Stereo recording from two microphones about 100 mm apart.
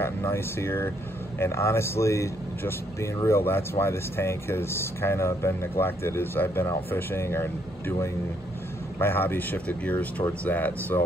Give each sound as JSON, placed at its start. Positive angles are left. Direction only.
{"t": 0.0, "sound": "speech", "side_deg": 25}
{"t": 9.0, "sound": "speech", "side_deg": 20}